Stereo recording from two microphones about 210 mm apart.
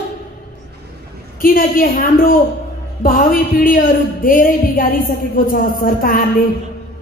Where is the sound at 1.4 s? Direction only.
40° left (ahead or behind).